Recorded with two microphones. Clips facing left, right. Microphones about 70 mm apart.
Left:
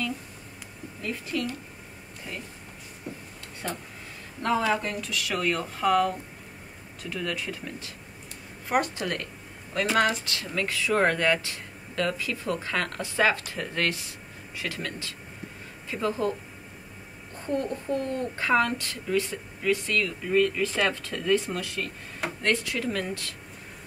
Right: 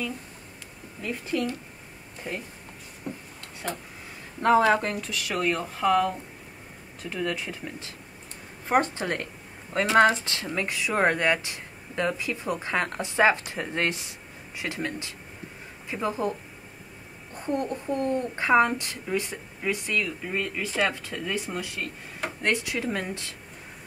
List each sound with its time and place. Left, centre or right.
1.3 s a woman's voice: right
2.3 s speech: right
3.6 s speech: centre
4.6 s speech: right
5.3 s speech: centre
7.0 s a woman's voice: right
17.4 s a woman's voice: centre